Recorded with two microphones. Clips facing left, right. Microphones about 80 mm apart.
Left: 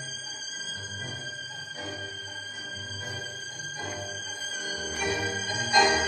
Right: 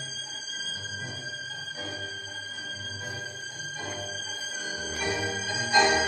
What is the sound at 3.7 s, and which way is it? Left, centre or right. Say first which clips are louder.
Music: left 1 dB; centre.